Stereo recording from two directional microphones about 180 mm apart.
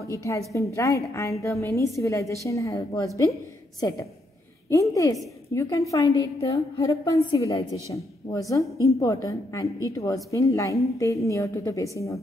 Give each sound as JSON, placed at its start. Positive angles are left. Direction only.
{"t": 0.0, "sound": "a woman's voice", "side_deg": 15}